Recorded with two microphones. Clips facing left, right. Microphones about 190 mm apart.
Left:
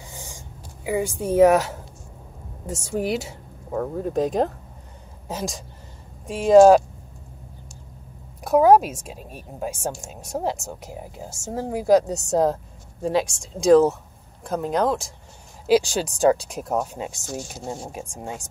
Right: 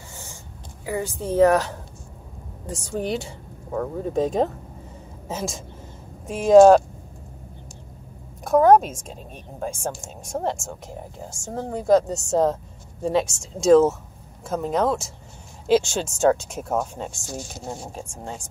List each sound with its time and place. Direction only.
0.1 s a sound: 15° left (ahead or behind)
0.8 s a woman's voice: 15° left (ahead or behind)
8.5 s a woman's voice: 5° left (ahead or behind)